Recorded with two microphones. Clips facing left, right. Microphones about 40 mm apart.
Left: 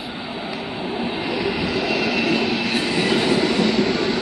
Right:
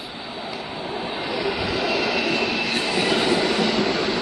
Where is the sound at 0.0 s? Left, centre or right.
Centre.